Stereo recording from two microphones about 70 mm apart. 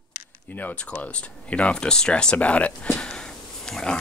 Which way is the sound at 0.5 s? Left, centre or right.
Left.